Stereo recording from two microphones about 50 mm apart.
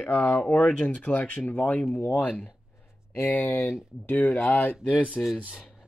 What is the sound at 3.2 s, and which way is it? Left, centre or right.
Speech, left.